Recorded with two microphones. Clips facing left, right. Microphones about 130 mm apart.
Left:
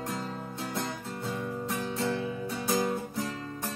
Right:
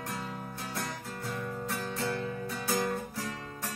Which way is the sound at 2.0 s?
20° left (ahead or behind).